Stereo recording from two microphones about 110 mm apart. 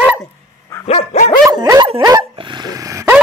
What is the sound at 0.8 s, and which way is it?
Dog, 75° left (ahead or behind).